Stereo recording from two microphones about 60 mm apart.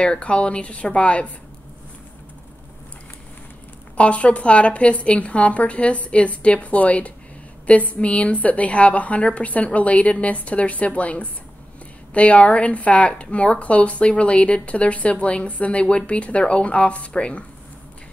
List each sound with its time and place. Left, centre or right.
0.0 s speech: centre
3.9 s speech: left